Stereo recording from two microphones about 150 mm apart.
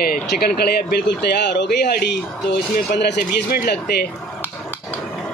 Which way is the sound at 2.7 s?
75° left (ahead or behind).